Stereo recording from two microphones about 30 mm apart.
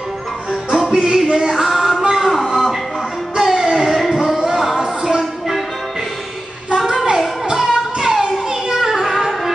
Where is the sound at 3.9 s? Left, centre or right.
Centre.